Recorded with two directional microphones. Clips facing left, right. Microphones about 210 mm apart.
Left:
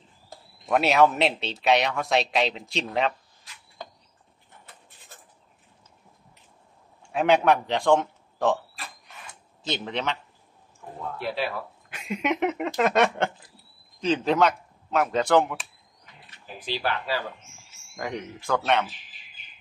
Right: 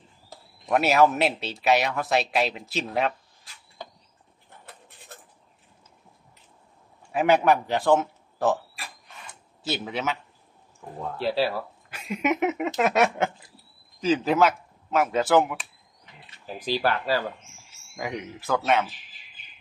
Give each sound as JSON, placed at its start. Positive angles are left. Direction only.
{"t": 0.7, "sound": "speech", "side_deg": 0}
{"t": 7.1, "sound": "a man's voice", "side_deg": -5}
{"t": 9.6, "sound": "speech", "side_deg": -5}
{"t": 11.1, "sound": "speech", "side_deg": -30}
{"t": 11.9, "sound": "speech", "side_deg": 0}
{"t": 16.5, "sound": "speech", "side_deg": -40}
{"t": 17.9, "sound": "speech", "side_deg": -10}